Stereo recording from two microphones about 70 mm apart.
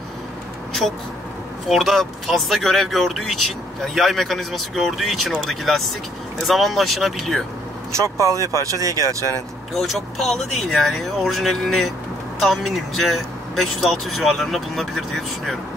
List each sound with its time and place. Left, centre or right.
1.7 s speech: centre
8.0 s speech: right
9.8 s speech: centre